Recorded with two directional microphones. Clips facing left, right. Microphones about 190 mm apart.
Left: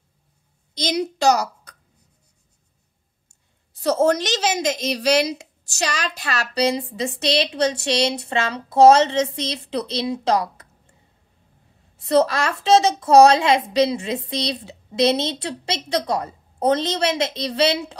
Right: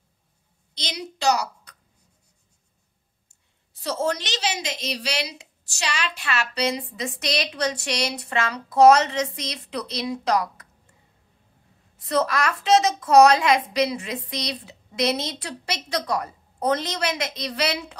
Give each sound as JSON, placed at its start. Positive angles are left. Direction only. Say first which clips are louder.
{"t": 0.7, "sound": "a woman's voice", "louder": "left 10 dB", "side_deg": 45}
{"t": 3.8, "sound": "a woman's voice", "louder": "left 8 dB", "side_deg": 45}
{"t": 12.0, "sound": "a woman's voice", "louder": "left 5 dB", "side_deg": 30}